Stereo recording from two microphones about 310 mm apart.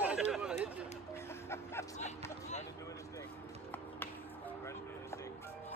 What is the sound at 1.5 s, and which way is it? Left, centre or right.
Music, centre.